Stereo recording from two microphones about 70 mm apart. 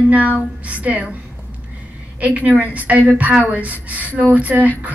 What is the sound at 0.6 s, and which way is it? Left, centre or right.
Speech, centre.